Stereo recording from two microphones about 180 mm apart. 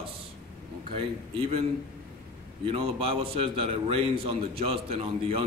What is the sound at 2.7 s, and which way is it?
A man's voice, 30° right (ahead or behind).